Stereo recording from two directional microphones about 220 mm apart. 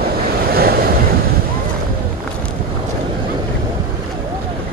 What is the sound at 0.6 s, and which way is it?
Waves, 45° right (ahead or behind).